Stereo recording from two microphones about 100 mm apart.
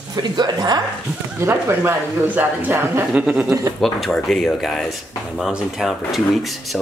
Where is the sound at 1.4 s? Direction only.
20° right (ahead or behind).